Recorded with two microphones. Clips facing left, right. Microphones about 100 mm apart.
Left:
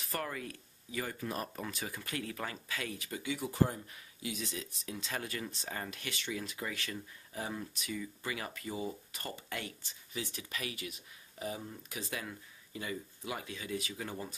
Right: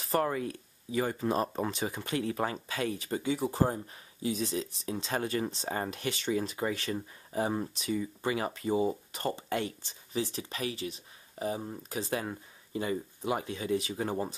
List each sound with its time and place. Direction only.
0.0 s speech: 30° right (ahead or behind)